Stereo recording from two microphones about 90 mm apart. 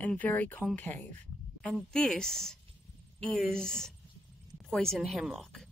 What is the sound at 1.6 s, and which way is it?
A woman's voice, 10° left (ahead or behind).